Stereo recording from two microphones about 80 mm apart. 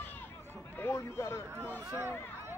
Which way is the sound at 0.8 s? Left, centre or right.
Left.